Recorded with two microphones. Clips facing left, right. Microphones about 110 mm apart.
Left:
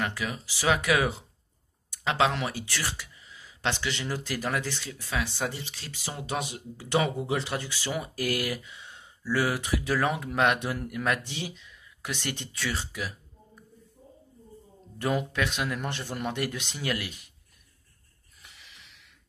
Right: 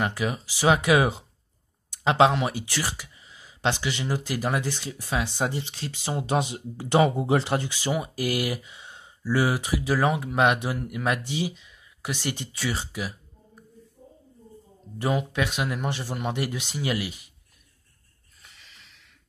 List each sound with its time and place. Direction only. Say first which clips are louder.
0.0 s speech: right 5 dB; 25° right (ahead or behind)
15.0 s speech: right 2 dB; 10° right (ahead or behind)